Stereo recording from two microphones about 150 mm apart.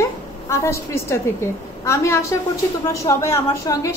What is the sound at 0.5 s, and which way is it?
A woman's voice, 15° left (ahead or behind).